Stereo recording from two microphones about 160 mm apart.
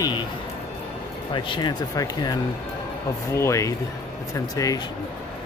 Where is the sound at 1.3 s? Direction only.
30° left (ahead or behind).